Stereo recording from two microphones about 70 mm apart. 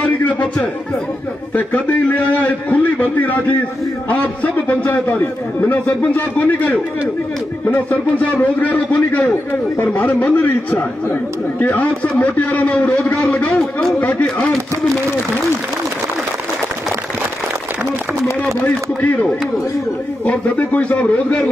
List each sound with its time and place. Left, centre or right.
0.0 s a sound: left
1.5 s a man's voice: left
18.6 s a man's voice: left
20.2 s a man's voice: left